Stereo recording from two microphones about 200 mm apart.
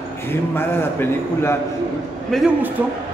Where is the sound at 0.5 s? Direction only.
10° left (ahead or behind).